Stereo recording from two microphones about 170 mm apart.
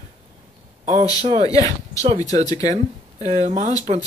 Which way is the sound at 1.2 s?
40° right (ahead or behind).